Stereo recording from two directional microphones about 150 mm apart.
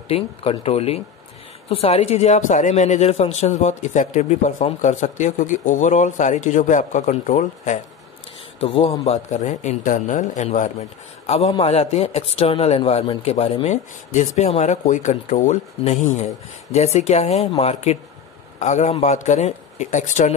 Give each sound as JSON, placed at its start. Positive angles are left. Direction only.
{"t": 0.1, "sound": "a man's voice", "side_deg": 40}
{"t": 8.5, "sound": "a man's voice", "side_deg": 35}